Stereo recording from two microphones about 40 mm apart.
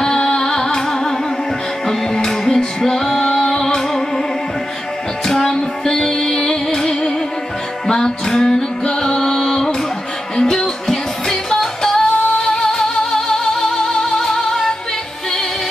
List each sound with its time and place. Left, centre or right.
0.0 s music: centre
5.2 s music: centre
8.3 s music: centre